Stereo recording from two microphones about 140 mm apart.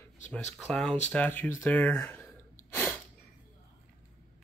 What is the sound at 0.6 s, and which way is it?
Speech, 5° left (ahead or behind).